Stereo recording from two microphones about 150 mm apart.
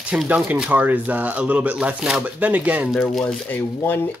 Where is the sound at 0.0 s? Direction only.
10° right (ahead or behind).